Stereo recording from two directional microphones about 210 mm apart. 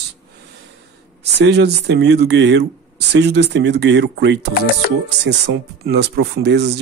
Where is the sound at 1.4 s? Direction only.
50° right (ahead or behind).